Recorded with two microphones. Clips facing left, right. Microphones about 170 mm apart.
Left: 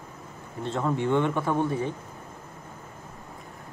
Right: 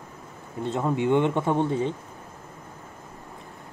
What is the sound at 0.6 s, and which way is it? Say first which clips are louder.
Speech: right 2 dB; 15° right (ahead or behind).